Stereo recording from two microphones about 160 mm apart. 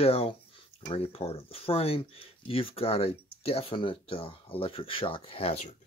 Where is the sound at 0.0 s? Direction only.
35° left (ahead or behind).